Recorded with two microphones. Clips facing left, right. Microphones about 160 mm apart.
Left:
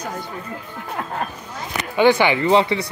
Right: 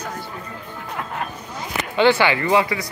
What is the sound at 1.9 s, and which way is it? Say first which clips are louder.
Speech: left 1 dB; 15° left (ahead or behind).